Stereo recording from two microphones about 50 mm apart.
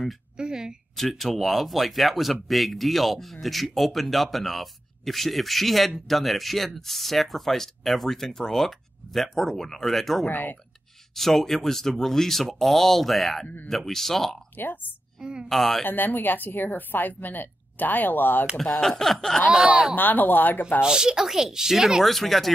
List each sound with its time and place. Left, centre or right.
0.4 s speech: centre
0.9 s speech: centre
10.3 s a woman's voice: left
11.1 s speech: centre
14.6 s a woman's voice: left
15.1 s a woman's voice: centre
15.4 s speech: centre
15.8 s a woman's voice: left
18.6 s speech: centre
20.0 s a woman's voice: left
20.8 s speech: centre